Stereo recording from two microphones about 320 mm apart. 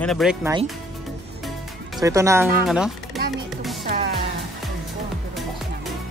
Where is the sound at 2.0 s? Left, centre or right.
Centre.